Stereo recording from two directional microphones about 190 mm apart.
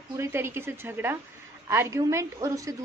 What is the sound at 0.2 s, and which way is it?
A woman's voice, 15° right (ahead or behind).